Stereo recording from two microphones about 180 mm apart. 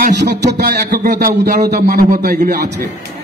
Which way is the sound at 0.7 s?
45° right (ahead or behind).